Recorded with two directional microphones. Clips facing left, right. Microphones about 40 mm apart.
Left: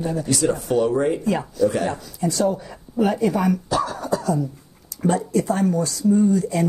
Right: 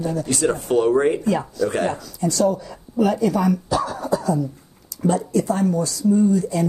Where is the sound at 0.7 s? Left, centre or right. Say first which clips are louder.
Right 4 dB; right.